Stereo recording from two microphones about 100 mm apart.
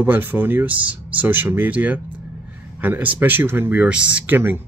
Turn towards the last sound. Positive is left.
turn(degrees=-20)  # may be behind; listen again after turning